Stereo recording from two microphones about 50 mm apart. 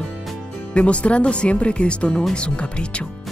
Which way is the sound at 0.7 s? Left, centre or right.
Left.